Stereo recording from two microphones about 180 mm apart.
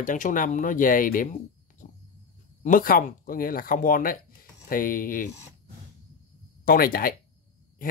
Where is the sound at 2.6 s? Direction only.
50° left (ahead or behind).